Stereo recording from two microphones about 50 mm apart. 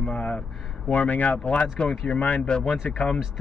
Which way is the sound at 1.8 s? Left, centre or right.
Left.